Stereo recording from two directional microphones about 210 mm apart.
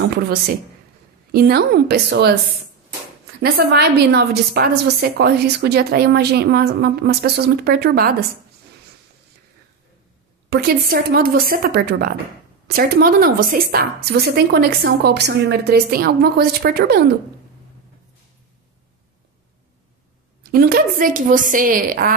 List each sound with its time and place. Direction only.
0.1 s a woman's voice: 50° right (ahead or behind)
3.3 s a woman's voice: 50° right (ahead or behind)
10.5 s a woman's voice: 45° right (ahead or behind)
20.4 s a woman's voice: 50° right (ahead or behind)